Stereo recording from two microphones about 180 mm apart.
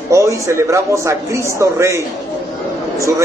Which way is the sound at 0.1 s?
15° right (ahead or behind).